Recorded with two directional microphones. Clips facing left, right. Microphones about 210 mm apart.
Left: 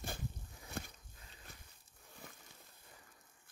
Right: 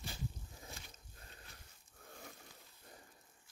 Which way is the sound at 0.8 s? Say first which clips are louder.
Left 13 dB; 60° left (ahead or behind).